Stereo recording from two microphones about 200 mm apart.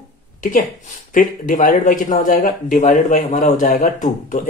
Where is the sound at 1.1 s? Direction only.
40° left (ahead or behind).